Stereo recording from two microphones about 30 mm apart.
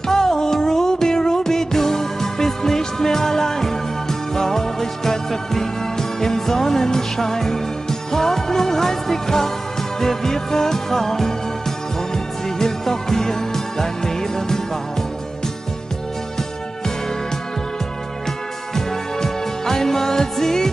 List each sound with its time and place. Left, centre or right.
0.0 s music: centre
12.4 s music: centre
18.8 s music: centre